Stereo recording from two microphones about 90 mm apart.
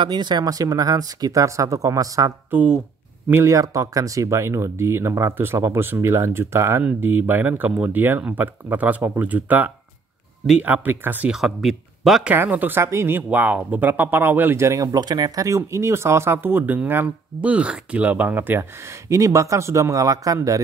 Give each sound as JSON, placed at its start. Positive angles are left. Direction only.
{"t": 0.0, "sound": "speech", "side_deg": -55}
{"t": 2.5, "sound": "speech", "side_deg": -15}
{"t": 3.4, "sound": "speech", "side_deg": -40}
{"t": 11.3, "sound": "speech", "side_deg": 0}
{"t": 12.3, "sound": "speech", "side_deg": -20}
{"t": 14.9, "sound": "speech", "side_deg": -50}